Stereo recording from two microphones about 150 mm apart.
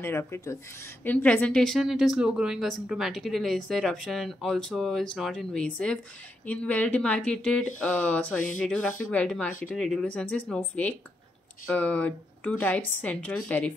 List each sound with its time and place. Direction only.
0.0 s a woman's voice: 15° left (ahead or behind)